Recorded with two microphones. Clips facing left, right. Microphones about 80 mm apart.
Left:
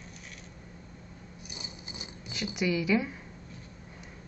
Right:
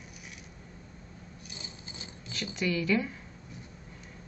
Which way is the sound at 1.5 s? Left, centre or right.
Centre.